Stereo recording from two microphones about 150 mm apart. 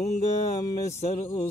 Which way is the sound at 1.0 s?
45° left (ahead or behind).